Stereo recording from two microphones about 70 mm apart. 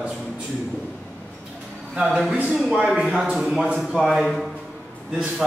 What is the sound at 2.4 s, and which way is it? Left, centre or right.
Speech, centre.